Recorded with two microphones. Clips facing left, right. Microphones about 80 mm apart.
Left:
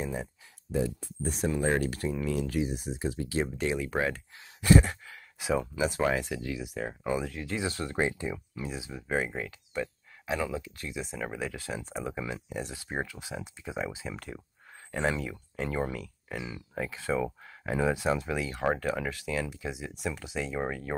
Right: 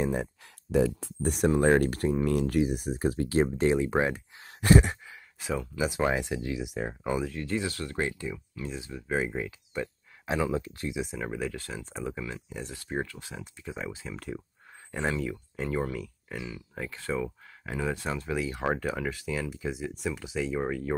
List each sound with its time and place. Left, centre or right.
0.0 s speech: right
0.7 s speech: right
1.8 s speech: right
4.8 s sigh: centre
5.8 s speech: centre
6.0 s speech: centre
6.9 s speech: centre
7.6 s speech: left
9.0 s speech: centre
10.5 s speech: right
11.1 s speech: centre
15.9 s a sound: centre
16.5 s speech: centre